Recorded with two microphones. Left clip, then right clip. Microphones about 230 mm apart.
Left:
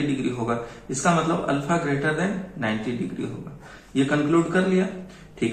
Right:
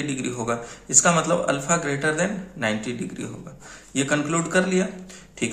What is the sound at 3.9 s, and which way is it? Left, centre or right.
Speech, right.